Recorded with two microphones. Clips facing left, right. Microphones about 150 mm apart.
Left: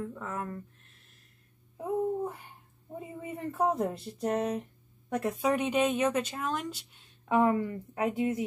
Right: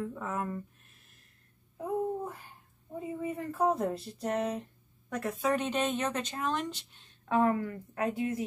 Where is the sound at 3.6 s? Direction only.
20° left (ahead or behind); by 7.4 s 5° left (ahead or behind).